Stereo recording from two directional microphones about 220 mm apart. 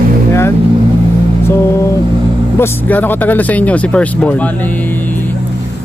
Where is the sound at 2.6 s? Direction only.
10° left (ahead or behind).